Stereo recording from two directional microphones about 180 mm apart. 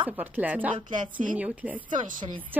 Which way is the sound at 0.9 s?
45° right (ahead or behind).